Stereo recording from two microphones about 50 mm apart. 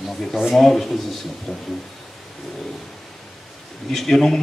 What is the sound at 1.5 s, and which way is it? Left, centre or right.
Speech, centre.